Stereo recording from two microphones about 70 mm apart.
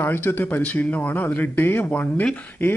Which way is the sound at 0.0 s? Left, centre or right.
Left.